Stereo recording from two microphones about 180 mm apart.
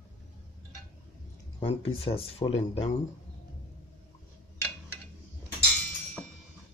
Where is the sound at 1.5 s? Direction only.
30° left (ahead or behind).